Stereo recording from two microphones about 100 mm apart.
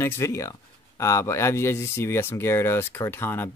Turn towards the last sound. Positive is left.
turn(degrees=20)  # may be behind; listen again after turning